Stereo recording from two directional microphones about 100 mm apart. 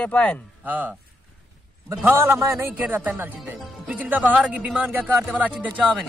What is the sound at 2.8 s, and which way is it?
Speech, 15° right (ahead or behind).